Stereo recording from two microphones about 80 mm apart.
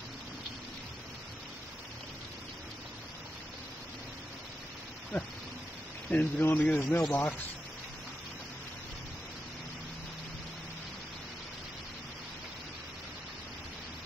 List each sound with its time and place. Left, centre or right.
5.1 s speech: centre